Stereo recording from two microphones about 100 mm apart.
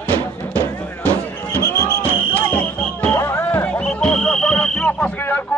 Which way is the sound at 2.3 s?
10° left (ahead or behind).